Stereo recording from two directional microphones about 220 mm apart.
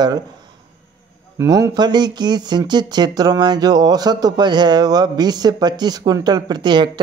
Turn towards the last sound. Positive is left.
turn(degrees=-20)  # may be behind; listen again after turning